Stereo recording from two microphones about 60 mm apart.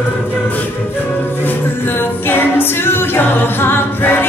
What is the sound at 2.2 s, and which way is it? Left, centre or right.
A capella, left.